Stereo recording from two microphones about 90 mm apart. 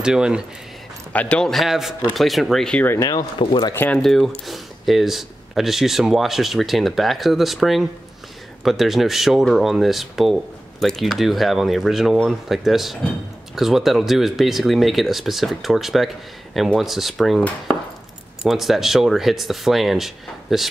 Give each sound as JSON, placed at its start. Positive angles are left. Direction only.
{"t": 0.0, "sound": "speech", "side_deg": -10}
{"t": 1.1, "sound": "speech", "side_deg": 15}
{"t": 3.0, "sound": "speech", "side_deg": 45}
{"t": 3.3, "sound": "speech", "side_deg": 55}
{"t": 3.7, "sound": "speech", "side_deg": 20}
{"t": 4.0, "sound": "speech", "side_deg": 5}
{"t": 18.4, "sound": "speech", "side_deg": 0}